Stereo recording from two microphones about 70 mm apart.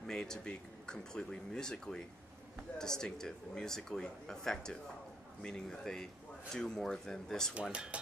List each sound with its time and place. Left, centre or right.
0.0 s speech: centre
7.7 s speech: centre